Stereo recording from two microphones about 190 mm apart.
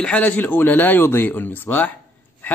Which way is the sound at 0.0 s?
5° left (ahead or behind).